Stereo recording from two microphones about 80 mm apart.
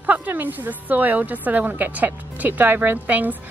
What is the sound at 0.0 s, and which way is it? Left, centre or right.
A woman's voice, right.